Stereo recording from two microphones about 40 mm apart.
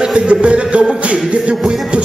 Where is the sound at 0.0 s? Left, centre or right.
Right.